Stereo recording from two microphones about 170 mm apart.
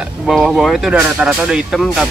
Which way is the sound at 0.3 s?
Centre (ahead or behind).